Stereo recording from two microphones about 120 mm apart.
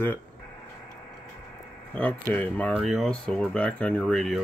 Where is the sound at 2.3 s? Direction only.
10° left (ahead or behind).